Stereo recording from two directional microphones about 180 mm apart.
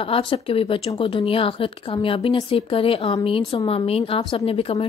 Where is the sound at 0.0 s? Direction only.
30° left (ahead or behind).